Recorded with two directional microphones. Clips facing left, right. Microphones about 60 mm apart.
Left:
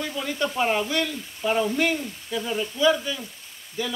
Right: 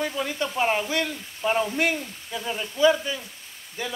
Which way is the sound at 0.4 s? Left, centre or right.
Centre.